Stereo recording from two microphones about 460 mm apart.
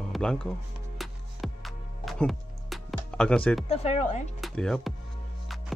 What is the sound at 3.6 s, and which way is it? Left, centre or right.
Speech, centre.